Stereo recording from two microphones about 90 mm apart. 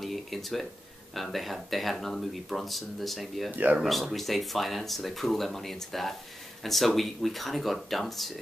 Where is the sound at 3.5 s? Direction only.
20° right (ahead or behind).